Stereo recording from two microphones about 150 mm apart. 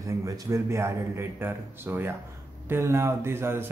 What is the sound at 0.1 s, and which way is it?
A man's voice, 20° right (ahead or behind).